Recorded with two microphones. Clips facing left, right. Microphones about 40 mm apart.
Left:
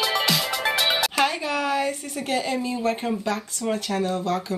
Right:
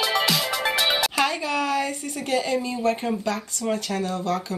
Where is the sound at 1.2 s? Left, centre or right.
Centre.